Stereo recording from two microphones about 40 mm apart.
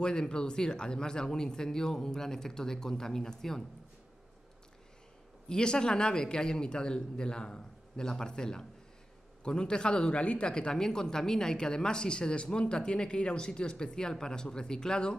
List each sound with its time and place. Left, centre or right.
0.0 s speech: left
5.5 s a man's voice: centre